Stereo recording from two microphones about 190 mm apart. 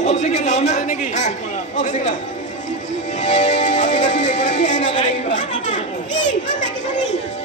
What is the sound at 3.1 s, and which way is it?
Music, 40° left (ahead or behind).